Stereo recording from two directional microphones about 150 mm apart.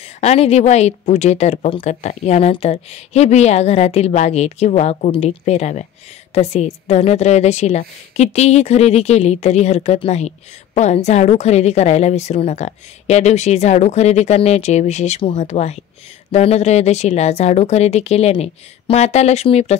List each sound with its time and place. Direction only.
0.2 s a woman's voice: 45° left (ahead or behind)